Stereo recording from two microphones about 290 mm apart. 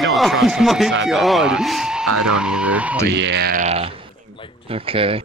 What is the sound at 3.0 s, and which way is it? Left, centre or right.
Speech, right.